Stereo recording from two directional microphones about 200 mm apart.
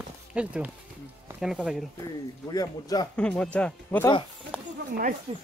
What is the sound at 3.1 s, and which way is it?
Speech, 5° left (ahead or behind).